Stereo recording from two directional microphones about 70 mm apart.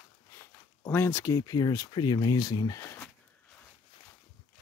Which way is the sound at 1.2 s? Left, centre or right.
Left.